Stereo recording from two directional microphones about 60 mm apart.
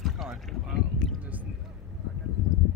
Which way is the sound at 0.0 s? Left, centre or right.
Centre.